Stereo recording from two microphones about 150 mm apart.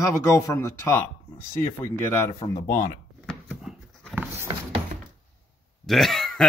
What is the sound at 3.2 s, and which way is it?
Dog, 5° left (ahead or behind).